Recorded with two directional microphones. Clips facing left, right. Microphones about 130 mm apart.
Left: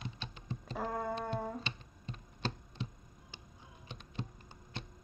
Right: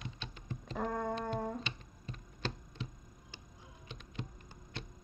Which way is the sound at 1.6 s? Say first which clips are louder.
Left 1 dB; 30° left (ahead or behind).